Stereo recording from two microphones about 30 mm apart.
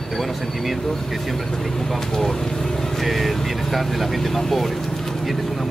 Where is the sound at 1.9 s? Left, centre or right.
Centre.